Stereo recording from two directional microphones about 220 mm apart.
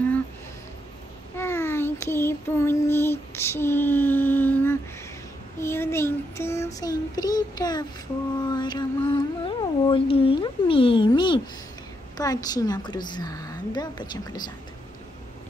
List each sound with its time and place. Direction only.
1.3 s child singing: 10° left (ahead or behind)
5.6 s a woman's voice: 10° left (ahead or behind)
8.5 s a sound: 20° left (ahead or behind)
9.1 s a woman's voice: 20° left (ahead or behind)